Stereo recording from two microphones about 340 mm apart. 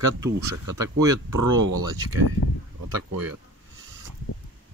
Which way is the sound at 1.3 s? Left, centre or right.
Right.